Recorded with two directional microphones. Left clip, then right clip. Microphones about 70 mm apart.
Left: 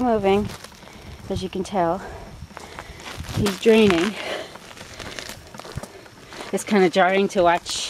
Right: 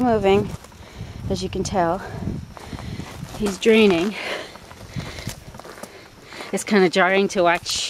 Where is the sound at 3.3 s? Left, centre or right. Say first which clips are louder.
Left 1 dB; left.